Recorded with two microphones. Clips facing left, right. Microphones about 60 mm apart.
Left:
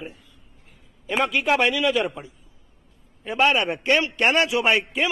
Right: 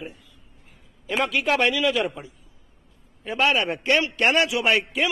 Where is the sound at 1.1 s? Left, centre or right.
Centre.